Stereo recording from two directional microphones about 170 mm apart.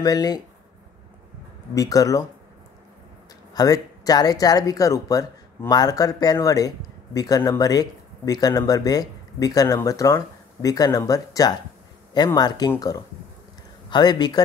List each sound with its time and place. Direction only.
0.0 s speech: 20° left (ahead or behind)
1.8 s speech: 20° left (ahead or behind)
3.5 s speech: 20° left (ahead or behind)